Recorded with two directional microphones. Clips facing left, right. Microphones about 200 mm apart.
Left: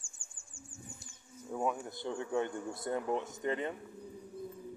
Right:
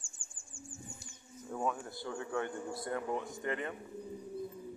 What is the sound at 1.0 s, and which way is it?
Speech, 10° left (ahead or behind).